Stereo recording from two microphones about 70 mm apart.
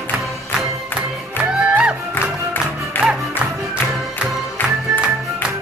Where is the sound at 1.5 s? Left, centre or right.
Centre.